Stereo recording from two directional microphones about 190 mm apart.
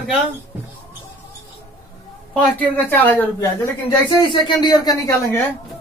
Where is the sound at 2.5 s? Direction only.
10° left (ahead or behind).